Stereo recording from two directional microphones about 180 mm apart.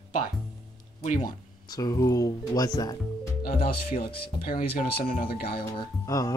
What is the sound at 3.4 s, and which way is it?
Speech, 55° left (ahead or behind).